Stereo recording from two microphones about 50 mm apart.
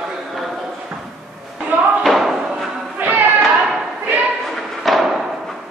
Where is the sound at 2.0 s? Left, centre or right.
Centre.